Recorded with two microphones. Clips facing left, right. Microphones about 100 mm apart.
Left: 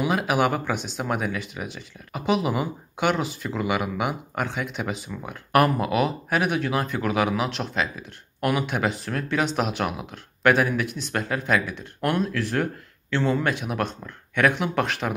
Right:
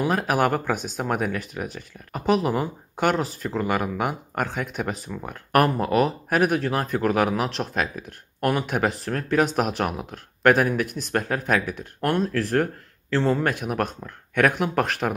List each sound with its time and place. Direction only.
0.0 s speech: 40° right (ahead or behind)